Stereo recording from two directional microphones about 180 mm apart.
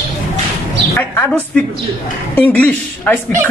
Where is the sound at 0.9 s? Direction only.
10° left (ahead or behind).